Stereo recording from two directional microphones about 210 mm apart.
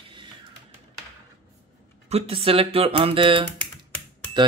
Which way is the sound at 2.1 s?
25° right (ahead or behind).